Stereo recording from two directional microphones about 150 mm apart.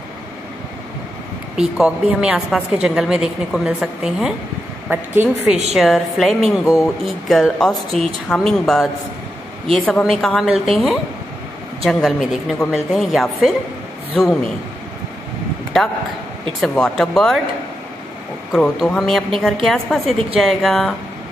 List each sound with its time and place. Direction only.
1.6 s a woman's voice: 5° right (ahead or behind)
5.8 s a woman's voice: centre (ahead or behind)
6.5 s a man's voice: 20° left (ahead or behind)
7.1 s a woman's voice: centre (ahead or behind)
16.6 s a woman's voice: 5° left (ahead or behind)
18.5 s a woman's voice: 5° left (ahead or behind)